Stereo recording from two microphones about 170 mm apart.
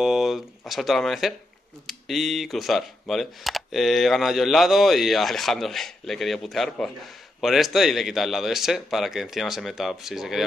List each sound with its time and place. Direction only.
0.0 s speech: centre (ahead or behind)